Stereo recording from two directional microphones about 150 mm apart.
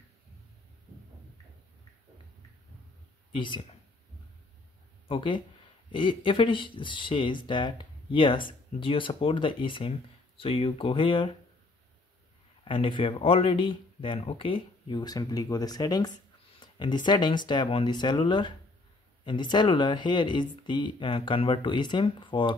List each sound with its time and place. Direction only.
3.3 s speech: 35° left (ahead or behind)
5.0 s speech: 35° left (ahead or behind)
12.6 s speech: 35° left (ahead or behind)